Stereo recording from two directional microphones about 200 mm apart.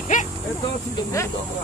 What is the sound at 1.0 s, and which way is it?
Speech, 15° left (ahead or behind).